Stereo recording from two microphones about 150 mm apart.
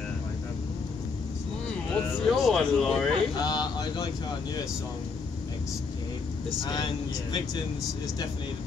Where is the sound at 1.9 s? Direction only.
Centre (ahead or behind).